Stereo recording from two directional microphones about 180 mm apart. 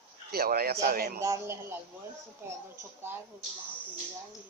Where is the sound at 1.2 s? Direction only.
15° right (ahead or behind).